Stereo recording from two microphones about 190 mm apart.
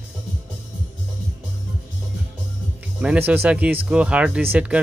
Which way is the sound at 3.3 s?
10° right (ahead or behind).